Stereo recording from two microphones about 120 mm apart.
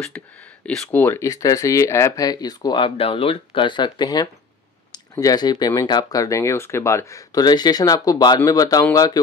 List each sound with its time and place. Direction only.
0.0 s speech: 10° left (ahead or behind)
0.9 s speech: 20° left (ahead or behind)